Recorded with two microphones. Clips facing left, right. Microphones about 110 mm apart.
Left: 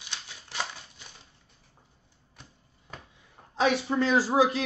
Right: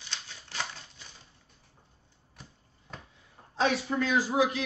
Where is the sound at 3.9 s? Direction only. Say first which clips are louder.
Left 3 dB; 30° left (ahead or behind).